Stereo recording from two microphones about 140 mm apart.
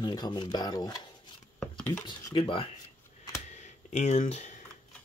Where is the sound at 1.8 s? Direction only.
10° left (ahead or behind).